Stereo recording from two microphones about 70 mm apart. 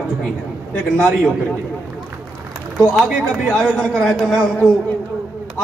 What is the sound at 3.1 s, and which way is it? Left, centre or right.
Speech, centre.